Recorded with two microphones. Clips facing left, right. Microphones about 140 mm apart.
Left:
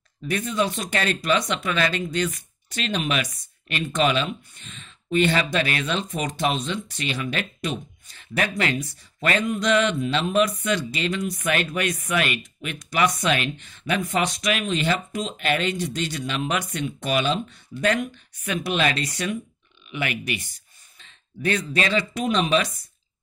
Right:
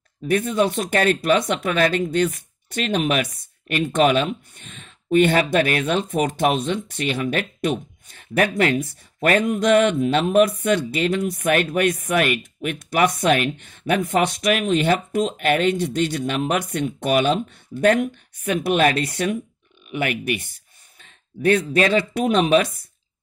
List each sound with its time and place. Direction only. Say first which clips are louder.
0.3 s speech: right 5 dB; 50° right (ahead or behind)